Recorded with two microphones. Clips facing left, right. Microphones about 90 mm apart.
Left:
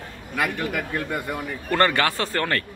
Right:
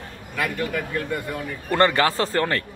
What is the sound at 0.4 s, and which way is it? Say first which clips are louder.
Speech: even; 15° left (ahead or behind).